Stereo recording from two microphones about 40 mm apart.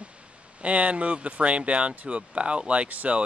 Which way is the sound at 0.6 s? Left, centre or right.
Right.